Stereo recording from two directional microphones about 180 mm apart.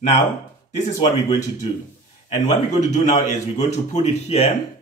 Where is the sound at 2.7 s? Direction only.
40° left (ahead or behind).